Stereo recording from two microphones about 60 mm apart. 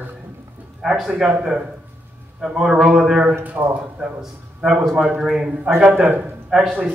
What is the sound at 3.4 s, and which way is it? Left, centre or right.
Speech, right.